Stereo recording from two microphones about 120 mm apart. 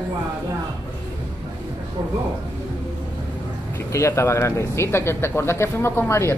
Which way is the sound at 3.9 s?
25° left (ahead or behind).